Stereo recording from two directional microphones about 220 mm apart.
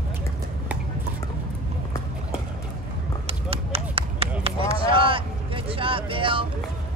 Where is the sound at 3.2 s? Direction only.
25° right (ahead or behind).